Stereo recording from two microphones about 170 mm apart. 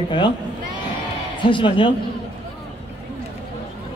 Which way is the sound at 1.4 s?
30° left (ahead or behind).